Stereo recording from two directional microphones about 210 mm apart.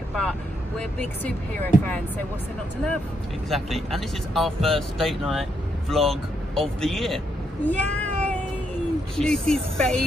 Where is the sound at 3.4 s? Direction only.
Centre (ahead or behind).